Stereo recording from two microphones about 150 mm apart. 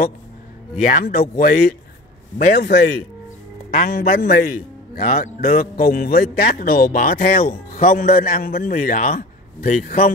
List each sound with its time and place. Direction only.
0.7 s a man's voice: 70° left (ahead or behind)
2.3 s a man's voice: 90° left
3.7 s a man's voice: 65° left (ahead or behind); by 4.4 s 90° left
4.9 s a man's voice: 60° left (ahead or behind); by 10.1 s 75° left (ahead or behind)